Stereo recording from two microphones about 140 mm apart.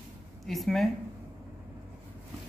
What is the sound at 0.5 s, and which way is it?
Speech, centre (ahead or behind).